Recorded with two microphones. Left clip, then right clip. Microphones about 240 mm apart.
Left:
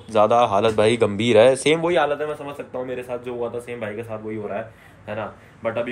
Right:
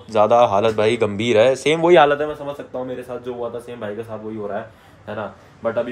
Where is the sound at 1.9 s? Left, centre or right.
Right.